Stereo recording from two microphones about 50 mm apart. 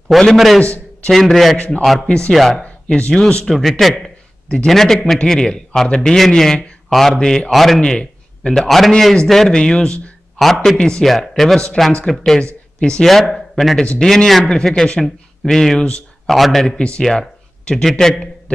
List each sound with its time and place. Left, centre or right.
0.1 s speech: centre
0.6 s a man's voice: centre
1.1 s a man's voice: centre
2.0 s speech: centre
2.3 s a man's voice: centre
2.6 s a sound: left
3.1 s speech: centre
3.4 s a man's voice: centre
7.5 s a man's voice: centre
7.8 s a man's voice: centre
13.1 s a man's voice: centre
16.6 s speech: centre
17.0 s a man's voice: centre